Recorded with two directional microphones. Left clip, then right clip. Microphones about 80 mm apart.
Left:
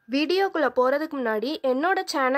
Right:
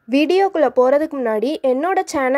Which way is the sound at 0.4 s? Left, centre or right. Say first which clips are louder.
Right 6 dB; centre.